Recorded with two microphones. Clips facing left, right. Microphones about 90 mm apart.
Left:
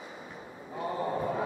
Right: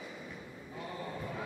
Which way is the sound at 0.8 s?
40° left (ahead or behind).